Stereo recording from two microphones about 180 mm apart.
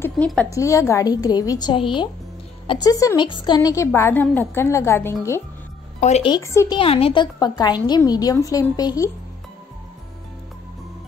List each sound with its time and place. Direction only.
0.2 s a woman's voice: centre (ahead or behind)
0.5 s a woman's voice: 15° left (ahead or behind)
5.9 s speech: 35° left (ahead or behind)
6.3 s a woman's voice: 15° left (ahead or behind)
6.8 s a woman's voice: 30° left (ahead or behind)